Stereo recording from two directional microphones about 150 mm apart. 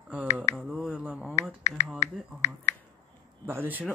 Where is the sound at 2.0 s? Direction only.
45° left (ahead or behind).